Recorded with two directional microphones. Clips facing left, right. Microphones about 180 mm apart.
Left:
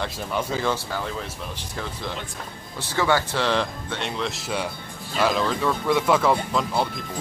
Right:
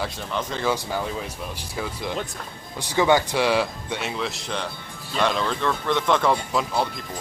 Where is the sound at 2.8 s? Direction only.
15° right (ahead or behind).